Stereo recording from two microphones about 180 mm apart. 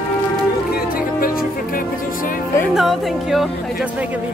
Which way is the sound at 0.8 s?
55° left (ahead or behind).